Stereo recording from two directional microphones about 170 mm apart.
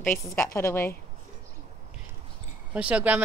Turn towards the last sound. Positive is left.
turn(degrees=-10)  # may be behind; listen again after turning